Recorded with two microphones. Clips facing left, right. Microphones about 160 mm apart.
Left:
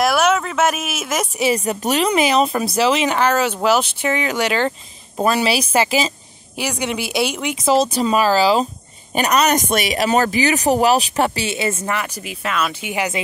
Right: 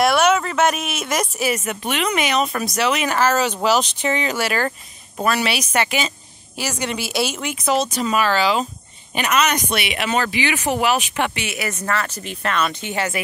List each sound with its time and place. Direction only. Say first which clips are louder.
0.0 s speech: even; centre (ahead or behind)
1.4 s speech: left 4 dB; 35° left (ahead or behind); by 4.7 s 15° left (ahead or behind)
5.2 s speech: left 3 dB; 30° left (ahead or behind)
6.8 s speech: left 2 dB; 15° left (ahead or behind)
7.7 s speech: left 4 dB; 35° left (ahead or behind)
11.9 s speech: even; 15° left (ahead or behind)
12.4 s speech: even; 5° left (ahead or behind)